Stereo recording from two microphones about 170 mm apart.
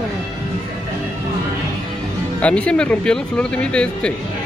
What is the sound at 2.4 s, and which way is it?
Speech, 5° left (ahead or behind).